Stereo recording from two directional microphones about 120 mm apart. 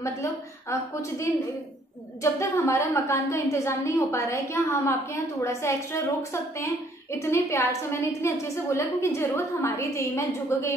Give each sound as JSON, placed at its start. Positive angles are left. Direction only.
{"t": 0.0, "sound": "a woman's voice", "side_deg": 25}
{"t": 2.3, "sound": "a woman's voice", "side_deg": 25}